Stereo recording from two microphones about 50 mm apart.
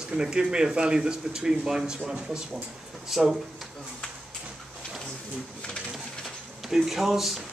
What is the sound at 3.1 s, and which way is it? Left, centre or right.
Speech, centre.